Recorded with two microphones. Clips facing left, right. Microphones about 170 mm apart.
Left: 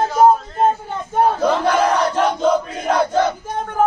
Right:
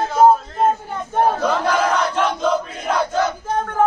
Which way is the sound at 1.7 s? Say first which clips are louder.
Left 2 dB; 35° left (ahead or behind).